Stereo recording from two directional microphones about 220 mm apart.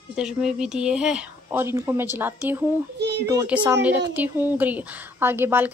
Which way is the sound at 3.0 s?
50° right (ahead or behind).